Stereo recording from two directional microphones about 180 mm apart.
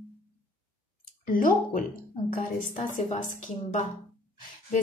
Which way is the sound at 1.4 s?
50° left (ahead or behind).